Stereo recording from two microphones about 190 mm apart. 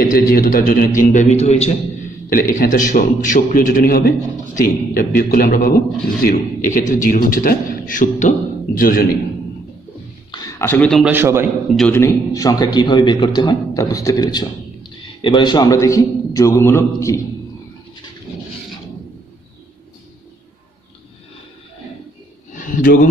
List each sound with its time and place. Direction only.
0.0 s a man's voice: 50° left (ahead or behind)
1.1 s a man's voice: 35° left (ahead or behind)
2.2 s a man's voice: 45° left (ahead or behind)
10.3 s a sound: 15° left (ahead or behind)
11.1 s a man's voice: 10° right (ahead or behind)
11.9 s a man's voice: 15° left (ahead or behind)
22.5 s a sound: 45° left (ahead or behind)